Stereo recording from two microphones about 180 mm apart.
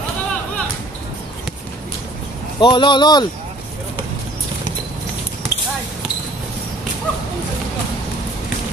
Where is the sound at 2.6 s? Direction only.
25° left (ahead or behind).